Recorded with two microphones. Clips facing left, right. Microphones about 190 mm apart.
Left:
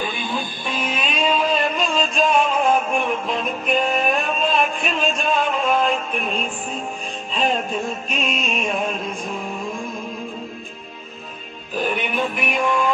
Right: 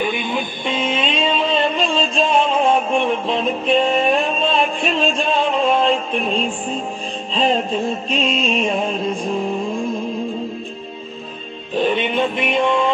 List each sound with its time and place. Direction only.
0.0 s music: 20° right (ahead or behind)
11.7 s music: 25° right (ahead or behind)